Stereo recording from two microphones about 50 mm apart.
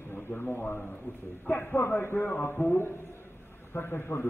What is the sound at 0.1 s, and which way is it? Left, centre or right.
A man's voice, left.